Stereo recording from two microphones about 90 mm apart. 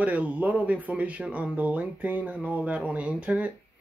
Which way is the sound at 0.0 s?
20° right (ahead or behind).